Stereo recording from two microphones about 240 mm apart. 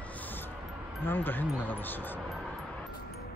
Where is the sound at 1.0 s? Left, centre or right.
Centre.